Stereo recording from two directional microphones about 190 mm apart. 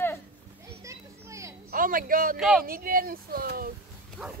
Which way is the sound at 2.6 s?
50° right (ahead or behind).